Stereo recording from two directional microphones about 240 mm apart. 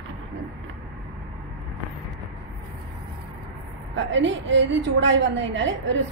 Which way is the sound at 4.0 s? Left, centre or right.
Right.